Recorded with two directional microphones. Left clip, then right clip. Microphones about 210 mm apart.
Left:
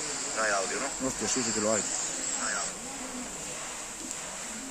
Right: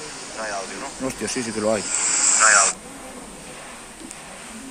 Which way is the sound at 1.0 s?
Centre (ahead or behind).